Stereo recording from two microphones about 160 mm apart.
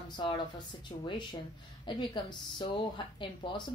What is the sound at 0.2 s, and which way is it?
Speech, 30° left (ahead or behind).